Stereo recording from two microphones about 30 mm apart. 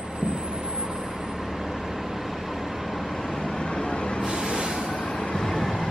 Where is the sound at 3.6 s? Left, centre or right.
Left.